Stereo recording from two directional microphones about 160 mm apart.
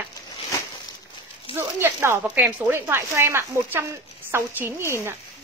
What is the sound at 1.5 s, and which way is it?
Speech, 15° right (ahead or behind).